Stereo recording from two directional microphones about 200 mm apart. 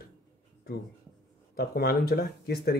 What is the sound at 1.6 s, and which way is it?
Speech, 50° left (ahead or behind).